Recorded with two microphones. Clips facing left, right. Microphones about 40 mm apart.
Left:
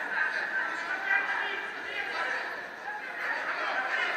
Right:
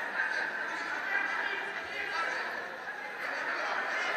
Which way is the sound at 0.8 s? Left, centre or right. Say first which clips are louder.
Left 3 dB; left.